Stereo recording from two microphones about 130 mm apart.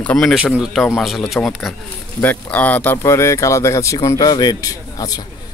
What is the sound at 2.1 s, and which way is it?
Speech, 15° left (ahead or behind).